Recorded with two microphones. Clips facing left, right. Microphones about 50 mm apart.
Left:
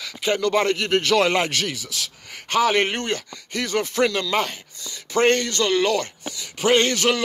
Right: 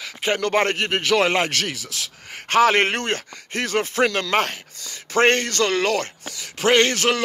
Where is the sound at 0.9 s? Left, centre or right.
Right.